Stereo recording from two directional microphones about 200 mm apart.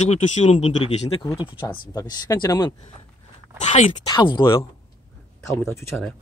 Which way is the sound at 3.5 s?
35° left (ahead or behind).